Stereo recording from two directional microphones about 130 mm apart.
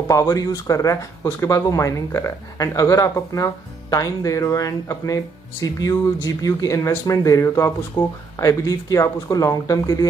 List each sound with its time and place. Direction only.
0.1 s speech: 25° left (ahead or behind)
8.0 s speech: 10° left (ahead or behind)
8.4 s speech: 25° left (ahead or behind)